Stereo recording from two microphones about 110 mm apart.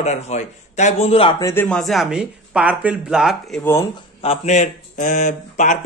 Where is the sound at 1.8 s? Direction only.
Centre (ahead or behind).